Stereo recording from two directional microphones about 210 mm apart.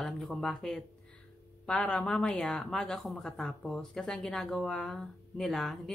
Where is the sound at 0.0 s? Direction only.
Centre (ahead or behind).